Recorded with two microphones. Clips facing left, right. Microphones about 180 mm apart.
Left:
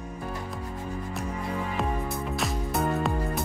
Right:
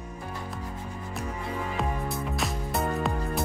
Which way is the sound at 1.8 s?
Centre (ahead or behind).